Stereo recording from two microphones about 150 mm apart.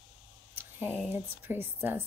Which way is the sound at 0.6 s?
15° right (ahead or behind).